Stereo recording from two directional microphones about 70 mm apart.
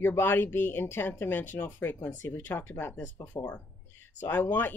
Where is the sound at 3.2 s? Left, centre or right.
Centre.